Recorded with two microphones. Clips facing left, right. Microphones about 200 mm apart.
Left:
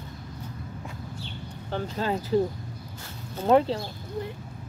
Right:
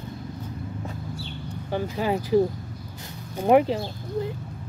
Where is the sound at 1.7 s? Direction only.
10° right (ahead or behind).